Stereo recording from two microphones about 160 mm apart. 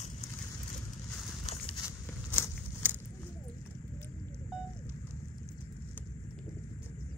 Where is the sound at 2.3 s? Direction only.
10° left (ahead or behind).